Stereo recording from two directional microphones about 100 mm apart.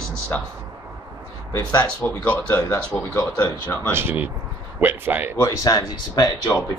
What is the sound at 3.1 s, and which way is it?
Speech, 40° left (ahead or behind).